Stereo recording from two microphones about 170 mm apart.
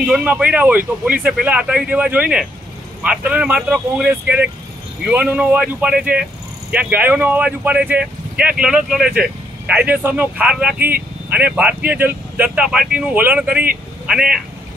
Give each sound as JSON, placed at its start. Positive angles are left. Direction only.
{"t": 0.0, "sound": "speech", "side_deg": -10}